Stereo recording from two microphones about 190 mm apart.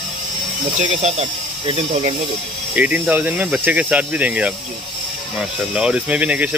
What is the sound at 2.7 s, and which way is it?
Speech, 5° right (ahead or behind).